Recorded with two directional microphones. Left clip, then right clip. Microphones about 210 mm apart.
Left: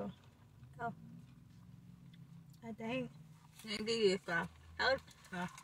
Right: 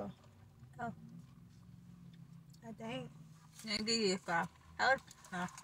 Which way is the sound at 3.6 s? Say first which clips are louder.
Left 1 dB; 15° right (ahead or behind).